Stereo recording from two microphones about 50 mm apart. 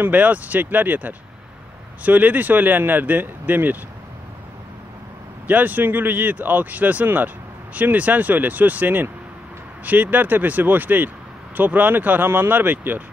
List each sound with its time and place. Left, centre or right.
0.0 s speech: right
5.5 s speech: right